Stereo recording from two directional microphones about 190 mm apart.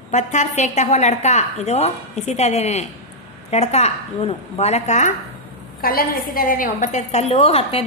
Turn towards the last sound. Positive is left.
turn(degrees=30)  # may be behind; listen again after turning